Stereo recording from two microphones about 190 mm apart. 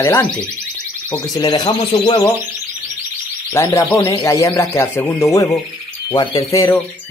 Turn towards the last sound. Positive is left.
turn(degrees=15)  # may be behind; listen again after turning